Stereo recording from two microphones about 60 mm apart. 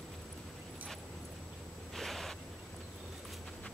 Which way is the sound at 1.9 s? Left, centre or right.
Centre.